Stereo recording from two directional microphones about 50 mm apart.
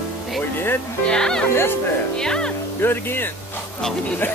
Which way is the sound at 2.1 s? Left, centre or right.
Centre.